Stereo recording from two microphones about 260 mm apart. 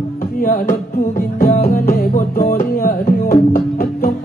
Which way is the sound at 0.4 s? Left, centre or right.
Left.